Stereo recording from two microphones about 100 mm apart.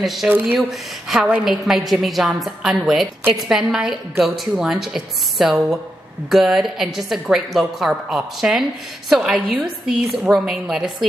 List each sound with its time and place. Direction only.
0.0 s a woman's voice: centre (ahead or behind)
0.3 s speech: 15° right (ahead or behind)
0.6 s a woman's voice: 5° right (ahead or behind)